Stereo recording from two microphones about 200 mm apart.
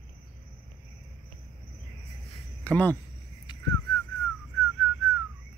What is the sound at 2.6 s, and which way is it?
Speech, 10° left (ahead or behind).